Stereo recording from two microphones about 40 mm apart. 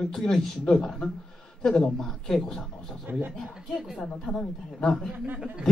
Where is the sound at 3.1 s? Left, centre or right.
Right.